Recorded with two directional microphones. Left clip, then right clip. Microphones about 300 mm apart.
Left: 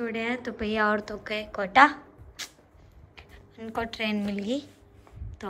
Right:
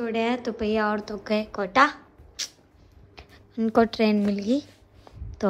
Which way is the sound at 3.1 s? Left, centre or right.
Centre.